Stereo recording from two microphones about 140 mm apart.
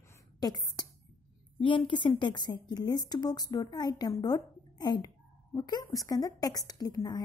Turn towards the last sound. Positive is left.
turn(degrees=25)  # may be behind; listen again after turning